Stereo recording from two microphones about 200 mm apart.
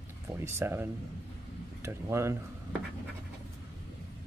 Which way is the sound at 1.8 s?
15° right (ahead or behind).